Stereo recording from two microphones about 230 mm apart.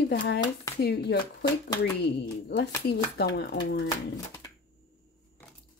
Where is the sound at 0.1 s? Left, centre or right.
Left.